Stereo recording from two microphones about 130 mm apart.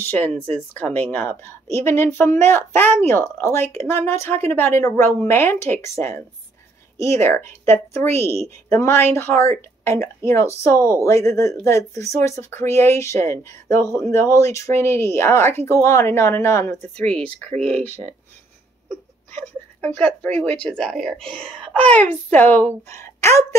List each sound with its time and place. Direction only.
0.0 s a woman's voice: 15° left (ahead or behind)
16.9 s a woman's voice: 10° left (ahead or behind)